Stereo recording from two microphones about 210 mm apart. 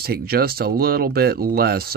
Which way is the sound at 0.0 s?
45° right (ahead or behind).